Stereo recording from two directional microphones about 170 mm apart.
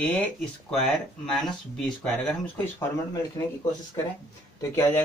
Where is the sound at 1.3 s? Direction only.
Centre (ahead or behind).